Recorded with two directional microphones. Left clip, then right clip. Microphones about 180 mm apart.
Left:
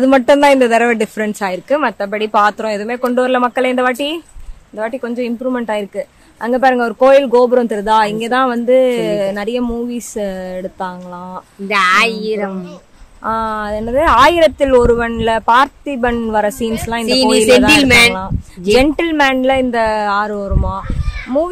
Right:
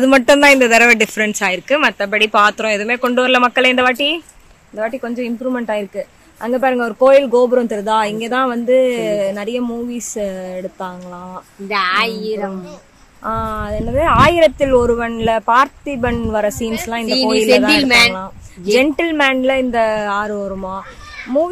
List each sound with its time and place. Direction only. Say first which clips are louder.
0.0 s a man's voice: even; 5° left (ahead or behind)
11.6 s a woman's voice: left 4 dB; 65° left (ahead or behind)
13.2 s speech: left 3 dB; 10° left (ahead or behind)
17.0 s a woman's voice: left 3 dB; 60° left (ahead or behind)
18.7 s speech: left 2 dB; 10° left (ahead or behind)